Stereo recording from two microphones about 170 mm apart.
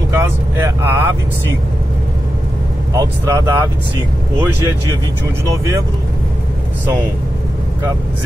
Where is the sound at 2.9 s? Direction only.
20° right (ahead or behind).